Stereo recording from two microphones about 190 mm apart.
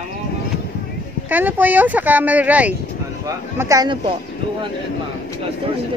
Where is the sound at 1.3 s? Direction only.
10° right (ahead or behind).